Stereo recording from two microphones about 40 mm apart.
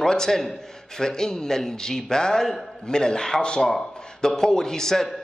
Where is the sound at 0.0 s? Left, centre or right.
Centre.